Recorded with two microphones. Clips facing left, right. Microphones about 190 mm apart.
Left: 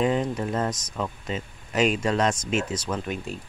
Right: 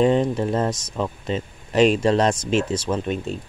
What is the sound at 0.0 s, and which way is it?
Speech, 30° right (ahead or behind).